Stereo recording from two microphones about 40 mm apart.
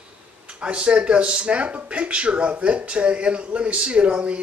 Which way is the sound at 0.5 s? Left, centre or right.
Right.